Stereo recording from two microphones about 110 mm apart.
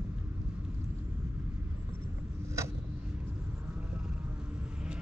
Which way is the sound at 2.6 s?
25° right (ahead or behind).